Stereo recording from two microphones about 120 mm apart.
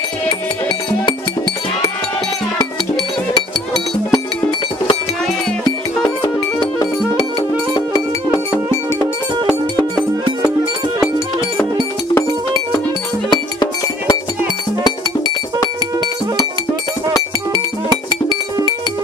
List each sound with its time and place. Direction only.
4.1 s music: 40° left (ahead or behind)
6.0 s music: 35° left (ahead or behind)
13.3 s music: 35° left (ahead or behind)
18.3 s music: 35° right (ahead or behind)